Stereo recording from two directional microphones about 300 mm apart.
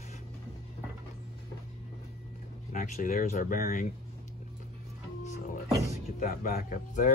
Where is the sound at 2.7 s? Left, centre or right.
Left.